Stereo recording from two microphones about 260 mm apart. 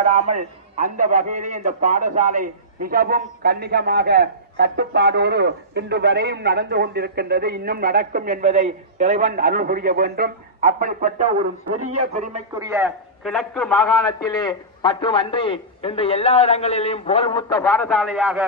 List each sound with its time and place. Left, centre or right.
0.0 s a man's voice: right
12.5 s a man's voice: centre